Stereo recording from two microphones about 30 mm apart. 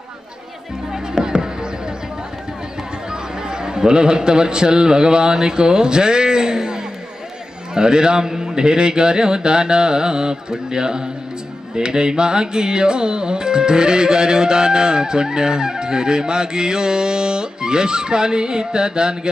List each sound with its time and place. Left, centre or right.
3.1 s a man's voice: right
7.7 s music: right